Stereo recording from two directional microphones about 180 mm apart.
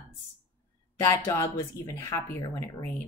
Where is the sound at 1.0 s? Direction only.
15° left (ahead or behind).